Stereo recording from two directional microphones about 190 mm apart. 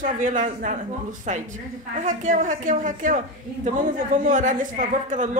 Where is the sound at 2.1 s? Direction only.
40° right (ahead or behind).